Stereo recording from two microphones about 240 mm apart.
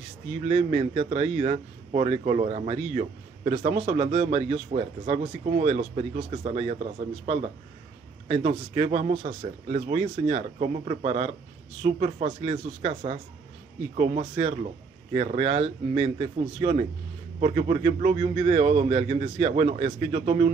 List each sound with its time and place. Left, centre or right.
0.5 s speech: right